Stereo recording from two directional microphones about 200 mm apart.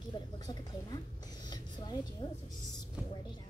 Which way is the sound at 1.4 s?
20° left (ahead or behind).